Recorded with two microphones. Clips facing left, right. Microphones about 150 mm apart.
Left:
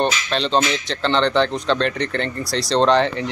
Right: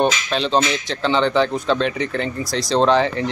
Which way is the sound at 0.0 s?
5° right (ahead or behind).